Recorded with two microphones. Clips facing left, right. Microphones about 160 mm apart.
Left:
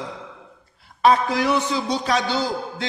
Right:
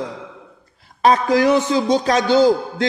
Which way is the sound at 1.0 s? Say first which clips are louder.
Right 4 dB; 40° right (ahead or behind).